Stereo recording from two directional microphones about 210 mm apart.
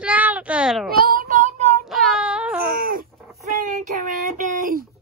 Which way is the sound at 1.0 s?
40° right (ahead or behind).